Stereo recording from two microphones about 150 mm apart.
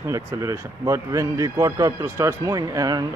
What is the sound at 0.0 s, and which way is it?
Speech, 20° right (ahead or behind).